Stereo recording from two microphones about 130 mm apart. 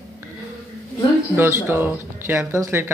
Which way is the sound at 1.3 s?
20° right (ahead or behind).